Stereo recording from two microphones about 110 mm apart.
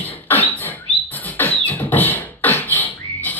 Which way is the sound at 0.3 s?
15° left (ahead or behind).